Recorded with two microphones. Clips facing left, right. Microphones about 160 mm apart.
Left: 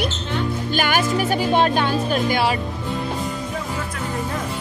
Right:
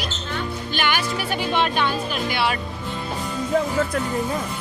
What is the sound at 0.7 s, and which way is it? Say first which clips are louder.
Speech: left 4 dB; 45° left (ahead or behind).